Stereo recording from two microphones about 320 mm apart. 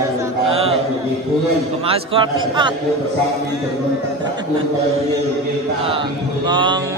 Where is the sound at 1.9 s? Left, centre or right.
Centre.